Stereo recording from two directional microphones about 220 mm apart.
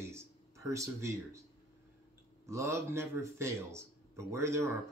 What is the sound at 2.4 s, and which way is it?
Speech, 15° right (ahead or behind).